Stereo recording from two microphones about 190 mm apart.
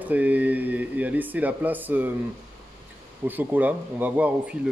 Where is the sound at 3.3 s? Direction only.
10° right (ahead or behind).